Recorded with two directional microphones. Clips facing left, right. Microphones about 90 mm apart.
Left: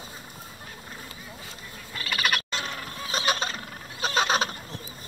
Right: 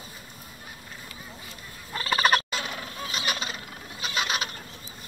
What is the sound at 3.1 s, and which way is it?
Vehicle, 35° left (ahead or behind).